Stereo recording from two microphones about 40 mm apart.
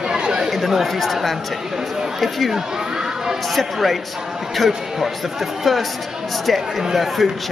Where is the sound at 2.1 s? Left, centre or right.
Centre.